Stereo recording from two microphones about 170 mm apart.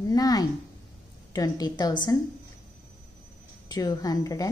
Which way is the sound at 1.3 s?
20° left (ahead or behind).